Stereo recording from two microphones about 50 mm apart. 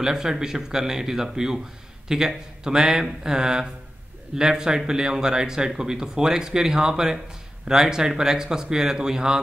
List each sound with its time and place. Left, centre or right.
0.0 s speech: centre